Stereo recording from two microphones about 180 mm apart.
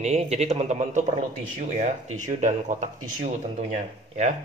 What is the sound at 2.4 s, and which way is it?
A man's voice, 40° right (ahead or behind).